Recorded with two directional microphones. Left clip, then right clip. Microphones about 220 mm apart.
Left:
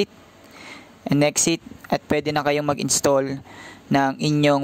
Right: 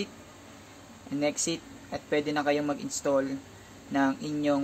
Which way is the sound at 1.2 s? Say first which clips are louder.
Left 8 dB; 50° left (ahead or behind).